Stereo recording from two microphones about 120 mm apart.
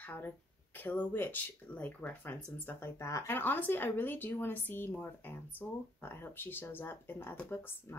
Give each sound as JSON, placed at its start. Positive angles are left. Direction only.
{"t": 0.0, "sound": "speech", "side_deg": 15}